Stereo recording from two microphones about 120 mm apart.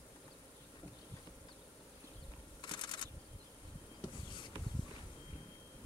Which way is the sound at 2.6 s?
40° left (ahead or behind).